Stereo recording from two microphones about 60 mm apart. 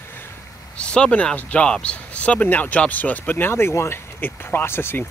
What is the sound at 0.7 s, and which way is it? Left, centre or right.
Speech, centre.